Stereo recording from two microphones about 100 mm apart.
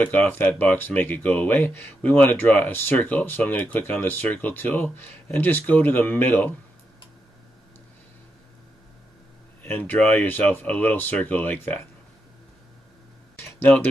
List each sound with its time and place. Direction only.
0.0 s speech: 15° left (ahead or behind)
9.6 s speech: 20° left (ahead or behind)
13.6 s speech: 15° left (ahead or behind)